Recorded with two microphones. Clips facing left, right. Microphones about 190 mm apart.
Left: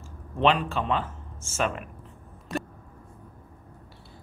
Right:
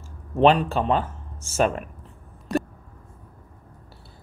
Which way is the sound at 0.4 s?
35° right (ahead or behind).